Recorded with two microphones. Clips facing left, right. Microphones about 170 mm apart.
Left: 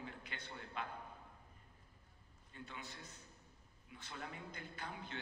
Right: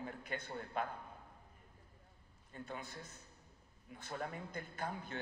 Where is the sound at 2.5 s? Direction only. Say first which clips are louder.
Right 5 dB; 45° right (ahead or behind).